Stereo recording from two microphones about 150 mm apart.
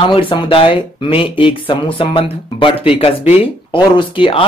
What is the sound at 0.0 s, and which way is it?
Speech, 35° left (ahead or behind).